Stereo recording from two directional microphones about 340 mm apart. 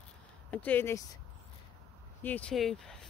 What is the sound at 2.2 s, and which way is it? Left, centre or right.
Speech, centre.